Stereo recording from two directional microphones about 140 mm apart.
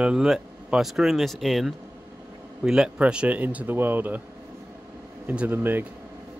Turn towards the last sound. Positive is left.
turn(degrees=-15)  # may be behind; listen again after turning